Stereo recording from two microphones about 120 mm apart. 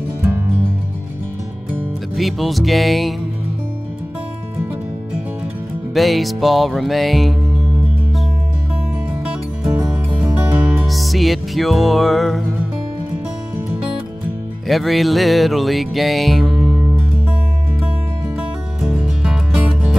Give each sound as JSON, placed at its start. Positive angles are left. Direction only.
{"t": 1.7, "sound": "music", "side_deg": 0}
{"t": 5.9, "sound": "music", "side_deg": 0}
{"t": 9.8, "sound": "music", "side_deg": -10}
{"t": 10.9, "sound": "music", "side_deg": 0}
{"t": 14.7, "sound": "music", "side_deg": 0}
{"t": 18.8, "sound": "music", "side_deg": -5}